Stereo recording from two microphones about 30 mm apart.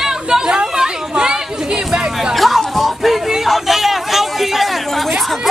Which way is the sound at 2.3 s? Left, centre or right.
Centre.